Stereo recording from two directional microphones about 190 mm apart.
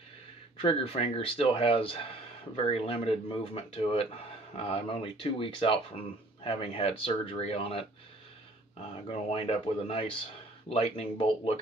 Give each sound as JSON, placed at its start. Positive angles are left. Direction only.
{"t": 0.6, "sound": "speech", "side_deg": 30}
{"t": 9.1, "sound": "speech", "side_deg": 30}